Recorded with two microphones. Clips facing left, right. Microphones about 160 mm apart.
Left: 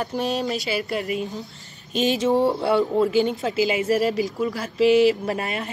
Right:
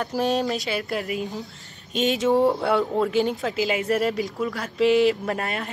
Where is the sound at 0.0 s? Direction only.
Centre (ahead or behind).